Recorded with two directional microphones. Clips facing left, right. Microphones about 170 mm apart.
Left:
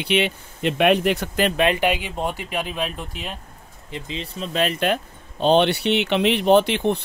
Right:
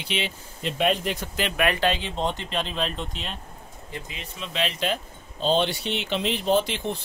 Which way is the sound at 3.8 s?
25° left (ahead or behind).